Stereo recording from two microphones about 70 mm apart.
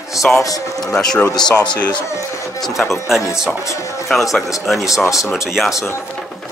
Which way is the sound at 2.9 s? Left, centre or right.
Centre.